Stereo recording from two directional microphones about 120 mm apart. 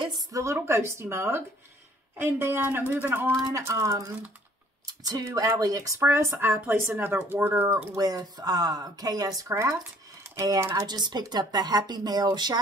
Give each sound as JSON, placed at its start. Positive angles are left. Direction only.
{"t": 0.3, "sound": "speech", "side_deg": -25}